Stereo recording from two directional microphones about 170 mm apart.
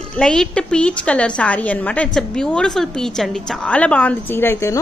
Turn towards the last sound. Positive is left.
turn(degrees=15)  # may be behind; listen again after turning